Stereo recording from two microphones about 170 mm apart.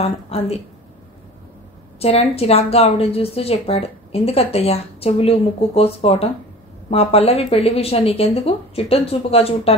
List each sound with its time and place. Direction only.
0.0 s speech: 35° left (ahead or behind)
2.0 s speech: 35° left (ahead or behind)